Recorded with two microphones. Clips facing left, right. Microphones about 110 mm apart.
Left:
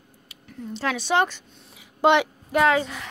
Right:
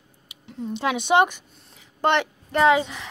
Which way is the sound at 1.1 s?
15° right (ahead or behind).